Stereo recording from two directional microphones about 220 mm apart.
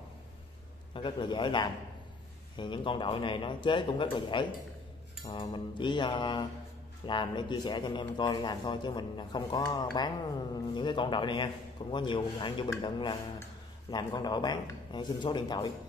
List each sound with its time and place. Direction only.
0.9 s speech: 20° left (ahead or behind)